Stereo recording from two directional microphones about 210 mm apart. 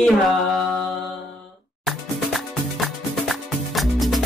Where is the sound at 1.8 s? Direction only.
Centre (ahead or behind).